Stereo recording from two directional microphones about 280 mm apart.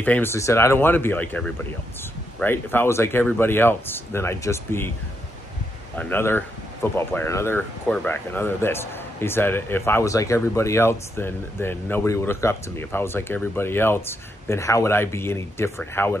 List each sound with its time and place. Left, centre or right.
0.0 s speech: centre
5.9 s speech: centre